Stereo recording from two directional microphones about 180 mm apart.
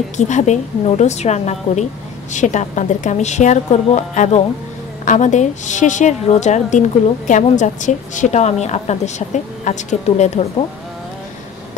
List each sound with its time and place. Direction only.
0.2 s a woman's voice: 40° left (ahead or behind)